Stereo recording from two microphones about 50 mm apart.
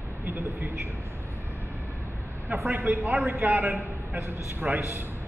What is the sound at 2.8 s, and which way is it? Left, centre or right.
A man's voice, right.